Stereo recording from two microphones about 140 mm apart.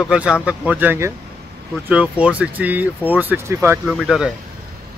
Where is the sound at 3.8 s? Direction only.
Centre (ahead or behind).